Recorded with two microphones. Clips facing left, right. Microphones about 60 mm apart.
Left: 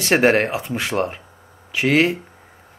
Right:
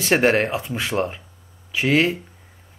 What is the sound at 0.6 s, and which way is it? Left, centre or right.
Speech, centre.